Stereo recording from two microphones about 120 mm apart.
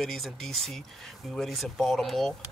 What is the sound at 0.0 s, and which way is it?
Speech, centre (ahead or behind).